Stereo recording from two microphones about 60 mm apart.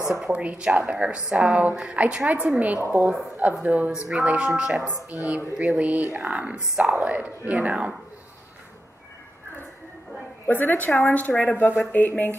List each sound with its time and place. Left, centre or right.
0.3 s a woman's voice: right
5.1 s a woman's voice: right
10.4 s a woman's voice: left